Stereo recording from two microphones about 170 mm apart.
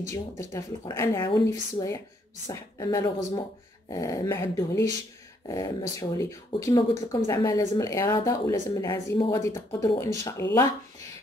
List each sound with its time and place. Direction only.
0.4 s speech: 20° left (ahead or behind)